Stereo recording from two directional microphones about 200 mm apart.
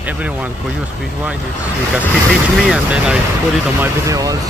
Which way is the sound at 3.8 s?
15° right (ahead or behind).